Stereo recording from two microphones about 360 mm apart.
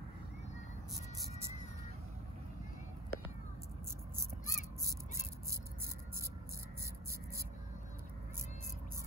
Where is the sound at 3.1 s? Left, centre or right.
Left.